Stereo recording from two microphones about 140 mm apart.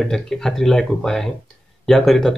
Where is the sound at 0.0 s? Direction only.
5° left (ahead or behind).